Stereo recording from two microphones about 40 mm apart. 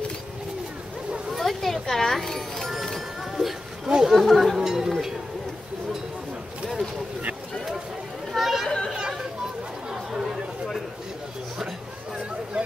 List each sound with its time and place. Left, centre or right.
1.3 s music: centre
3.3 s a sound: centre
4.0 s speech: centre
8.3 s a sound: centre
8.6 s chatter: left
10.1 s chatter: centre